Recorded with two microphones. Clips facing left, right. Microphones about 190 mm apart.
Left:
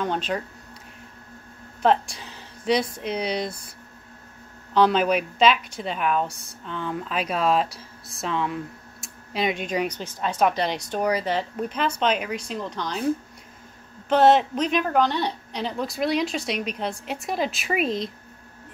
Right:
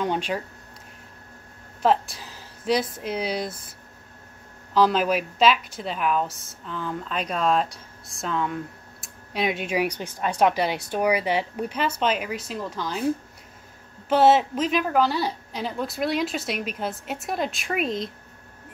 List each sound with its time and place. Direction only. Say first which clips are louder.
0.0 s a sound: even; 10° right (ahead or behind)
1.8 s speech: left 1 dB; centre (ahead or behind)
4.7 s a woman's voice: left 1 dB; centre (ahead or behind)
14.0 s a woman's voice: left 1 dB; 5° right (ahead or behind)